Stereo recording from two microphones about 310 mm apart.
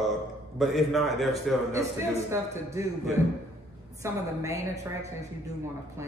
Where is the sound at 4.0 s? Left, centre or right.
Centre.